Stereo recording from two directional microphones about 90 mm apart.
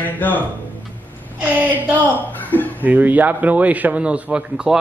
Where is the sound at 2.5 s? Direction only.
20° left (ahead or behind).